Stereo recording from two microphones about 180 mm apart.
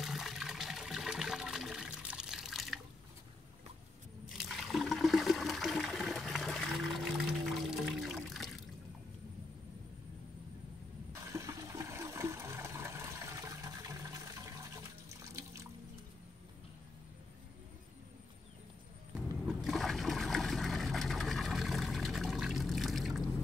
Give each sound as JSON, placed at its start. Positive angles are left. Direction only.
{"t": 0.0, "sound": "water", "side_deg": 0}
{"t": 4.3, "sound": "toilet flush", "side_deg": 0}
{"t": 11.2, "sound": "toilet flush", "side_deg": -15}
{"t": 19.4, "sound": "trickle", "side_deg": 0}